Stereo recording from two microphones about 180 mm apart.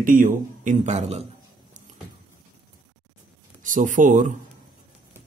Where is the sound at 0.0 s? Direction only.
50° right (ahead or behind).